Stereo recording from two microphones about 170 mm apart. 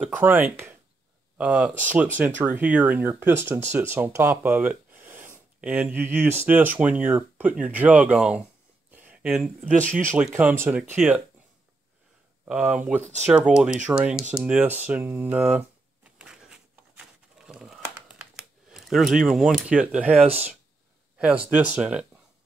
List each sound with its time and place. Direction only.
0.1 s speech: 10° right (ahead or behind)
8.9 s a sound: 10° right (ahead or behind)
9.9 s speech: 10° right (ahead or behind)
12.4 s speech: 5° right (ahead or behind)
13.0 s speech: 45° right (ahead or behind)
13.3 s speech: 5° right (ahead or behind)
14.4 s a sound: 10° right (ahead or behind)
18.7 s speech: centre (ahead or behind)
21.5 s speech: 10° right (ahead or behind)